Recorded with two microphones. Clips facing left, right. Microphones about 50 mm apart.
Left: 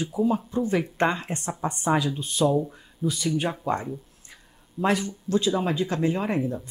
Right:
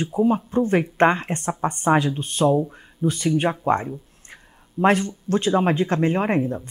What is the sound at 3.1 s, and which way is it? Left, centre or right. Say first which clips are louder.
Speech: right 5 dB; right.